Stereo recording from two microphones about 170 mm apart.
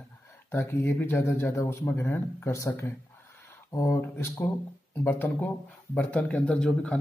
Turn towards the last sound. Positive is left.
turn(degrees=5)  # may be behind; listen again after turning